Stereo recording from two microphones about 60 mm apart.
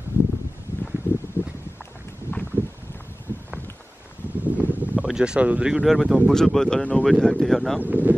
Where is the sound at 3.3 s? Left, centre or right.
Left.